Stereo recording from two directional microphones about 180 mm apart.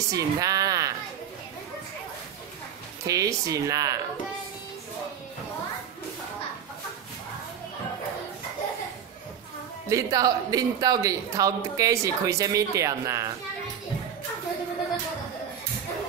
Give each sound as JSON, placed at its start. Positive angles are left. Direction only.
{"t": 0.1, "sound": "a woman's voice", "side_deg": -20}
{"t": 3.1, "sound": "speech", "side_deg": -20}
{"t": 9.8, "sound": "speech", "side_deg": -20}